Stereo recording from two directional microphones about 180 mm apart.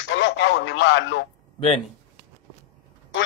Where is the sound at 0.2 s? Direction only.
80° left.